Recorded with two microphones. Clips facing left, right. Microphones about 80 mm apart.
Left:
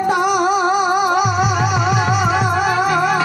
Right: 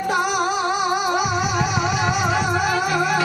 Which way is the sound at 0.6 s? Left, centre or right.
Left.